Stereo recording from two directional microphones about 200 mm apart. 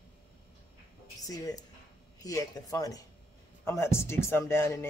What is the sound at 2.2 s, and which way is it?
A man's voice, 15° left (ahead or behind).